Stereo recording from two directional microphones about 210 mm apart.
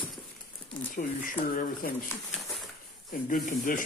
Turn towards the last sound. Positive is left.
turn(degrees=45)  # may be behind; listen again after turning